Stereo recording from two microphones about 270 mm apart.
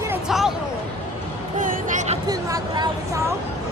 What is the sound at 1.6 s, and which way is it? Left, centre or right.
Speech, right.